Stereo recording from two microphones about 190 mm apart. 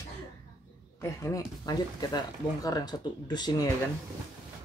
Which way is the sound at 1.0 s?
15° left (ahead or behind).